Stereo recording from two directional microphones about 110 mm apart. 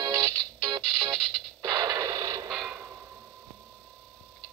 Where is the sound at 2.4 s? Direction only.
Centre (ahead or behind).